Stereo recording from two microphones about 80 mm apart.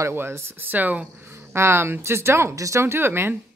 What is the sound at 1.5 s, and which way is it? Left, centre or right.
Speech, right.